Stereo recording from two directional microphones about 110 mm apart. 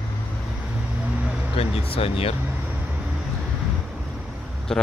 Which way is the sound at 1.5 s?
60° left (ahead or behind).